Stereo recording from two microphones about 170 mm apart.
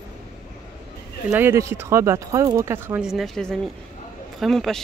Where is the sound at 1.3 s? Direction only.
15° right (ahead or behind).